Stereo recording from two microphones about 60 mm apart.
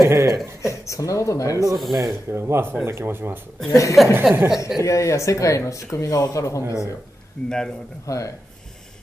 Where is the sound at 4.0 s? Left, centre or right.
Centre.